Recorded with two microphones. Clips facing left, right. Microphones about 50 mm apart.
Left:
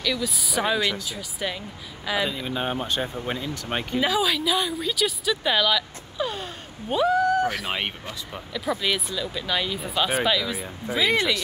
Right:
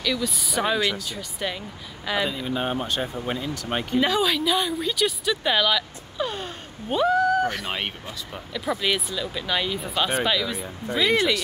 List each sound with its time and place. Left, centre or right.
0.0 s speech: centre
2.4 s speech: left
4.0 s speech: centre